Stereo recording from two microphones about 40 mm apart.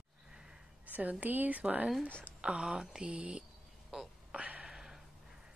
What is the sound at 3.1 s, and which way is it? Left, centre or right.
Speech, right.